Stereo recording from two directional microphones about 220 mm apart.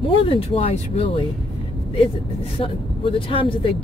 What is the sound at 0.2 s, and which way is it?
Speech, 25° left (ahead or behind).